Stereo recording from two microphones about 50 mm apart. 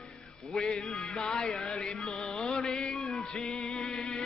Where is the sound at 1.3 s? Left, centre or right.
Centre.